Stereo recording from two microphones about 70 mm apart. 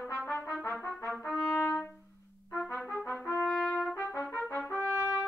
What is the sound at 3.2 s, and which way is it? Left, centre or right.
Trumpet, left.